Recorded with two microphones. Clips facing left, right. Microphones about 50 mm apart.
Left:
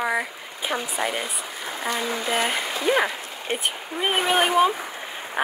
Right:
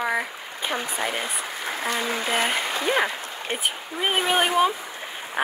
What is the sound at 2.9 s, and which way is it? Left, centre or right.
Speech, centre.